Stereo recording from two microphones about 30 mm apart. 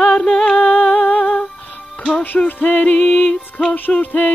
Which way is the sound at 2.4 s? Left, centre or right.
Left.